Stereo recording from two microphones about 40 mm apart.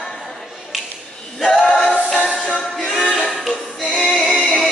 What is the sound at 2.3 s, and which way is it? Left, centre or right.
Music, centre.